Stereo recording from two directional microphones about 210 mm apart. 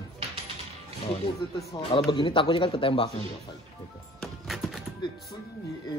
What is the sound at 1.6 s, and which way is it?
Speech, 15° left (ahead or behind).